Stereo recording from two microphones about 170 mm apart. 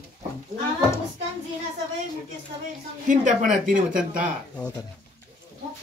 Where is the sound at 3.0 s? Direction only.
50° right (ahead or behind).